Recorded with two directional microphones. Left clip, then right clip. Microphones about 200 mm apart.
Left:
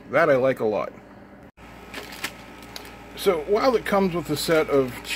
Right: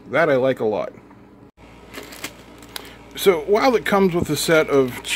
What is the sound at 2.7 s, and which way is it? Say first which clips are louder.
Speech: right 6 dB; 35° right (ahead or behind).